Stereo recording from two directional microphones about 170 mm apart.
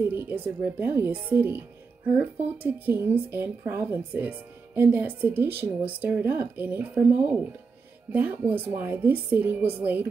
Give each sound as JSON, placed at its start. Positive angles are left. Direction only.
{"t": 0.1, "sound": "speech", "side_deg": -10}